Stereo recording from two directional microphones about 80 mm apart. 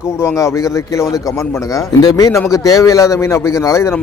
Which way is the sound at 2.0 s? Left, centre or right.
Left.